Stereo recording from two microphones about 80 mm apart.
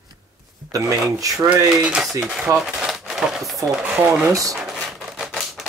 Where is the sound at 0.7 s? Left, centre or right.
Right.